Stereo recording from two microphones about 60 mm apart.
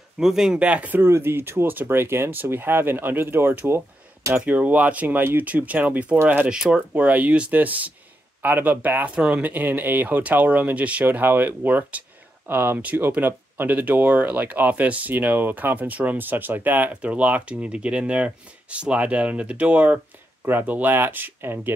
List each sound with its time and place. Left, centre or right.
0.2 s speech: centre
0.6 s speech: right
0.9 s speech: right
4.5 s speech: right
6.5 s speech: centre
6.9 s speech: right